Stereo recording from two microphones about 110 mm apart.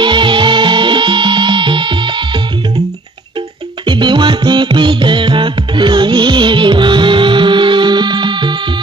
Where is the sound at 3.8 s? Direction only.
45° right (ahead or behind).